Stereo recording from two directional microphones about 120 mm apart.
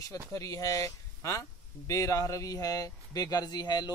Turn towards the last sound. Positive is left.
turn(degrees=35)  # may be behind; listen again after turning